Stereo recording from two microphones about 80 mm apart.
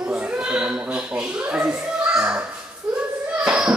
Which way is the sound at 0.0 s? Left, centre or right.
Centre.